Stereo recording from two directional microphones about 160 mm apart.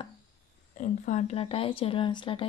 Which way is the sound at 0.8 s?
50° left (ahead or behind).